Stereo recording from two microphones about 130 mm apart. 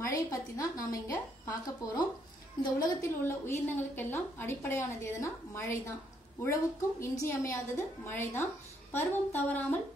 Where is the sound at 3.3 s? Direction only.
20° left (ahead or behind).